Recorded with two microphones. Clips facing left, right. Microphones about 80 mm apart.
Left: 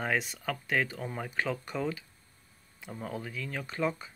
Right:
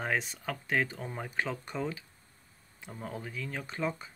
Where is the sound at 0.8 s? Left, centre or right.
Right.